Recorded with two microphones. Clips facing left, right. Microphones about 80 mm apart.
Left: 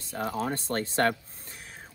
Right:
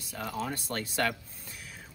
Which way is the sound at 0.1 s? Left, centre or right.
Left.